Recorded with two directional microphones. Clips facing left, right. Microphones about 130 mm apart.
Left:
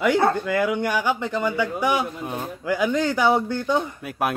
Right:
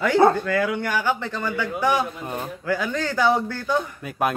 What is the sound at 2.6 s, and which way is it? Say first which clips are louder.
A man's voice: left 4 dB; 15° left (ahead or behind).